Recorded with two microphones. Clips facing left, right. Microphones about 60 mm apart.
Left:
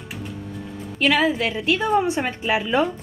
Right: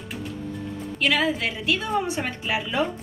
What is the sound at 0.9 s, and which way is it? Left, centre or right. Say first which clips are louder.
A woman's voice: left 4 dB; left.